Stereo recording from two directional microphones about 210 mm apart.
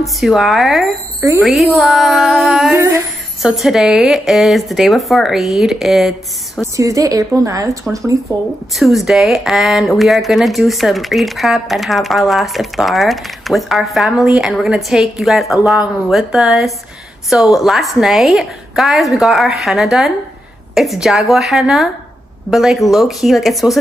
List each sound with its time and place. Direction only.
0.0 s speech: centre (ahead or behind)
3.4 s speech: centre (ahead or behind)
6.6 s speech: 15° right (ahead or behind)
8.7 s speech: centre (ahead or behind)